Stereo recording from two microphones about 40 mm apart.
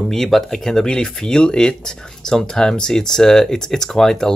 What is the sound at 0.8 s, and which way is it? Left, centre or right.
Speech, left.